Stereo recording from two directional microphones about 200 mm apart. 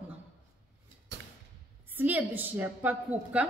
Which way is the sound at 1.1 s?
65° right (ahead or behind).